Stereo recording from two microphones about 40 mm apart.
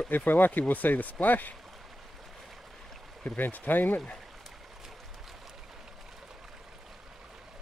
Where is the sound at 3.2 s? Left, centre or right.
Left.